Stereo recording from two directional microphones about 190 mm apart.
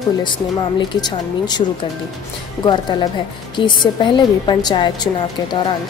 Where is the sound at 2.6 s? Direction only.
25° left (ahead or behind).